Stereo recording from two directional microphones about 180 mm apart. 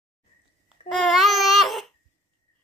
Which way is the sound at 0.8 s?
Centre (ahead or behind).